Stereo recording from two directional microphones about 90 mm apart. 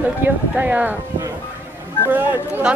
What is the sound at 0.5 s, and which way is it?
Speech, 15° right (ahead or behind).